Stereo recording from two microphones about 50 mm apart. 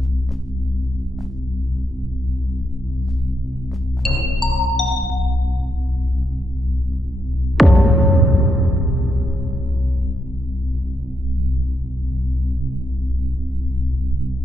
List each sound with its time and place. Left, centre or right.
4.0 s music: centre
7.5 s music: centre